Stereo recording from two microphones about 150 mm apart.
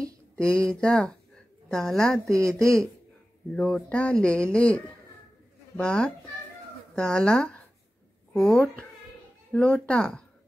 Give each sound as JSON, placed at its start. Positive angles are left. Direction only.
{"t": 0.4, "sound": "a woman's voice", "side_deg": 5}
{"t": 2.6, "sound": "speech", "side_deg": -20}
{"t": 3.5, "sound": "speech", "side_deg": 5}
{"t": 7.2, "sound": "speech", "side_deg": 5}